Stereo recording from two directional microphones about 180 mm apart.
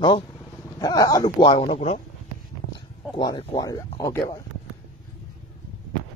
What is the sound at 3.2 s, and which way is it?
Speech, 30° left (ahead or behind).